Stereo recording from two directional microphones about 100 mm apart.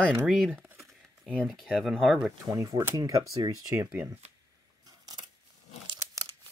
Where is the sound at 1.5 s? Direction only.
Centre (ahead or behind).